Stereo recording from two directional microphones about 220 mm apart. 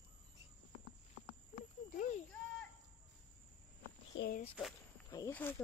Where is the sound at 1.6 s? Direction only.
35° left (ahead or behind).